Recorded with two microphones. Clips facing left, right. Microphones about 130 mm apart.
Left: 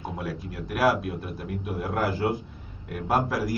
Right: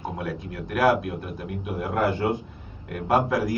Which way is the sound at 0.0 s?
Centre (ahead or behind).